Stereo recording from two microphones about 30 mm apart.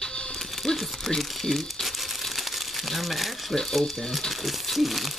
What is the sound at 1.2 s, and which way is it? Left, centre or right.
Speech, centre.